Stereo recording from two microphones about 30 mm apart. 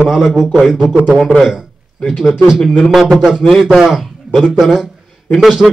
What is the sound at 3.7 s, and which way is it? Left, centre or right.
Speech, centre.